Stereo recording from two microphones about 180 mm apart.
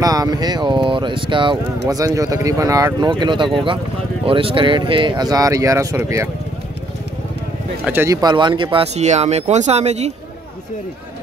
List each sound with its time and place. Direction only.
0.0 s speech: 20° right (ahead or behind)
7.8 s speech: 10° right (ahead or behind); by 10.1 s 35° right (ahead or behind)